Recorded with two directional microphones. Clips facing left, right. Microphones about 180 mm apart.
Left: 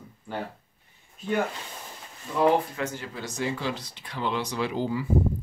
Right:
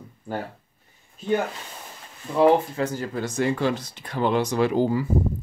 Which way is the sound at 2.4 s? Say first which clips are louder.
Right 4 dB; 35° right (ahead or behind).